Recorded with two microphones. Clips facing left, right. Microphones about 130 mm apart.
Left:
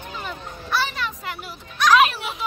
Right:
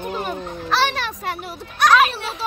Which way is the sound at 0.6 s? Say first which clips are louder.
Right 4 dB; 90° right.